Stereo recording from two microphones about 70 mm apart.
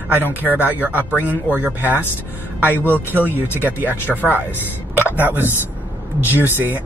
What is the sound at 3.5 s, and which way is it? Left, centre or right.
Speech, right.